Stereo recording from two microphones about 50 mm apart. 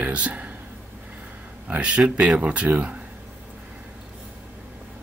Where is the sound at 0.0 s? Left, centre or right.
Right.